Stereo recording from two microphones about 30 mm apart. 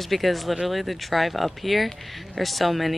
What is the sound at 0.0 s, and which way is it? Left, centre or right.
Speech, centre.